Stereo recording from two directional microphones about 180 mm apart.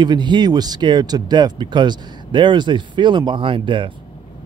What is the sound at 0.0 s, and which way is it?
Speech, 25° right (ahead or behind).